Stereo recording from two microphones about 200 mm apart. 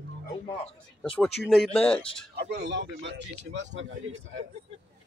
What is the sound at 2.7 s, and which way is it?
Speech, 60° right (ahead or behind).